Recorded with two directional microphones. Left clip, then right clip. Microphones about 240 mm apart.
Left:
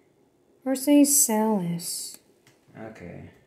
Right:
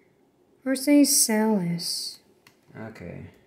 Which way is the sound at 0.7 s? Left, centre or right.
Centre.